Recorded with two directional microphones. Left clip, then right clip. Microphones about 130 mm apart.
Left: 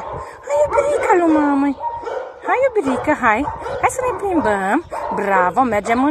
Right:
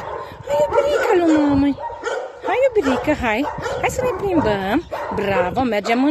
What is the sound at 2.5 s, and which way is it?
Speech, 25° right (ahead or behind).